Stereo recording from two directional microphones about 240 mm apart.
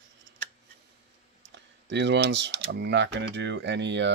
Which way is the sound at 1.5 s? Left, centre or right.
Right.